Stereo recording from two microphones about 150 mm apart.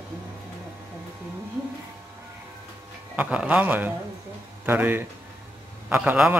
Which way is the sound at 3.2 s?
10° right (ahead or behind).